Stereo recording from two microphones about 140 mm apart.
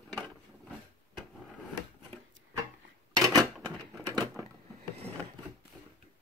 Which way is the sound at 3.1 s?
25° right (ahead or behind).